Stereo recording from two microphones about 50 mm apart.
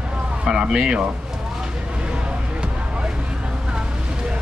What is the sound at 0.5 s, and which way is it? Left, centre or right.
Speech, centre.